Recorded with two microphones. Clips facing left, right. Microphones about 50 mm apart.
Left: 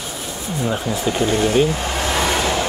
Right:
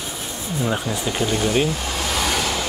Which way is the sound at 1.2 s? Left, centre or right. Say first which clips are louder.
Left 3 dB; left.